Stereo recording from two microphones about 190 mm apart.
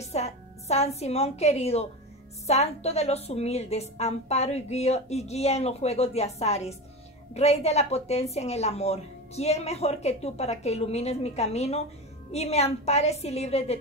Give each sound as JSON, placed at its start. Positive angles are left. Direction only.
{"t": 0.0, "sound": "a woman's voice", "side_deg": 35}